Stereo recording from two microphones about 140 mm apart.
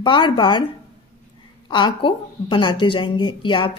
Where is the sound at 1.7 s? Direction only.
35° left (ahead or behind).